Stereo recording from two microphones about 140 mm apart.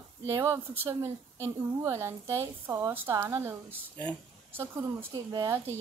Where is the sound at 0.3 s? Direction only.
20° right (ahead or behind).